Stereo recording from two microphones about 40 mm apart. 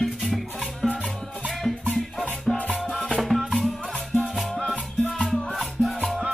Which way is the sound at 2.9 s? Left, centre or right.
Centre.